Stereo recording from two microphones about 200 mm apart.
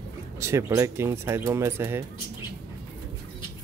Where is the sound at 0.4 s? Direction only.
15° right (ahead or behind).